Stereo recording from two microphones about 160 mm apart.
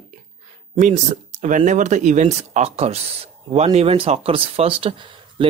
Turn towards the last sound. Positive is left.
turn(degrees=-30)  # may be behind; listen again after turning